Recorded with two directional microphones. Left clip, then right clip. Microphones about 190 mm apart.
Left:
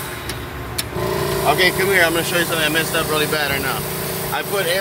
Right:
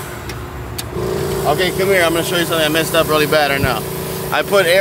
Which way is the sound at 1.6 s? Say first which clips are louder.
Right 1 dB; 20° right (ahead or behind).